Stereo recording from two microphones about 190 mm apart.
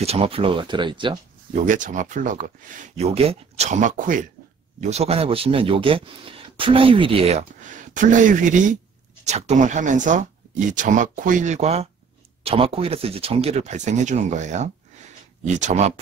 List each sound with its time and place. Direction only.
0.0 s speech: 30° right (ahead or behind)
1.5 s speech: 40° right (ahead or behind)
7.9 s speech: 40° right (ahead or behind)